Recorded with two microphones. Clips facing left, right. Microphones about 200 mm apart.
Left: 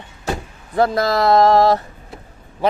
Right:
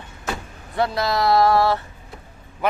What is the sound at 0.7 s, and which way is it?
Speech, 45° left (ahead or behind).